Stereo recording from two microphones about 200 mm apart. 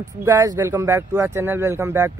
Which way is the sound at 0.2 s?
15° right (ahead or behind).